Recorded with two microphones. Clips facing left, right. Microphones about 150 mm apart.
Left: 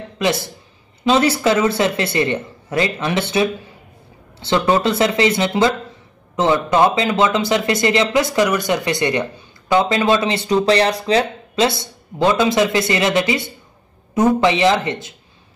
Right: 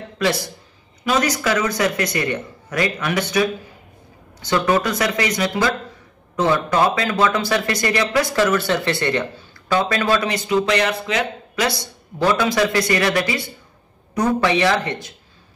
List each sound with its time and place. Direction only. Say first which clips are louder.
0.2 s speech: left 1 dB; 25° left (ahead or behind)